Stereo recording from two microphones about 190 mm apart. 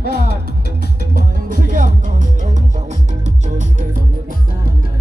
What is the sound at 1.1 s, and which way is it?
Music, 45° right (ahead or behind).